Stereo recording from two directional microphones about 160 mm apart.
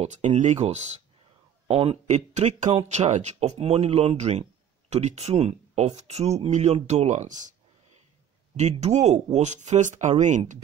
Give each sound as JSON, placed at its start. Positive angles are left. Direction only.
{"t": 0.0, "sound": "speech", "side_deg": -45}
{"t": 8.5, "sound": "speech", "side_deg": -45}